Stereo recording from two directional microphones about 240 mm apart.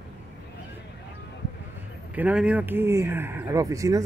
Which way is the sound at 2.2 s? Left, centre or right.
Centre.